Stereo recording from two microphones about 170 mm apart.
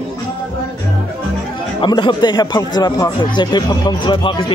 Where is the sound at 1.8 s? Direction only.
25° left (ahead or behind).